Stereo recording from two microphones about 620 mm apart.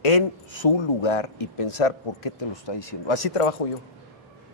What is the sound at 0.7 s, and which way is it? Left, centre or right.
Speech, left.